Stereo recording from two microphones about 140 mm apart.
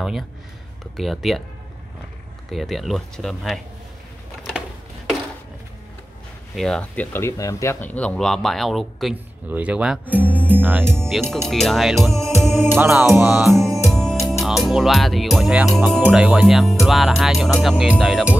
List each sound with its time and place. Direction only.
0.9 s speech: centre (ahead or behind)
2.5 s speech: centre (ahead or behind)
6.5 s speech: 5° left (ahead or behind)
9.1 s speech: 10° right (ahead or behind)
11.1 s speech: centre (ahead or behind)
12.4 s music: 15° right (ahead or behind)
13.5 s music: centre (ahead or behind)
16.0 s speech: 10° right (ahead or behind)